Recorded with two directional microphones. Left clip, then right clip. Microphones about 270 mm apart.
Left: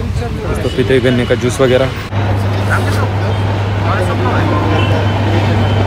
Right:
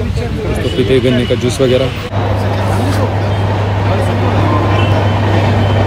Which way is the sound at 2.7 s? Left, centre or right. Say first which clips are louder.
Left 4 dB; centre.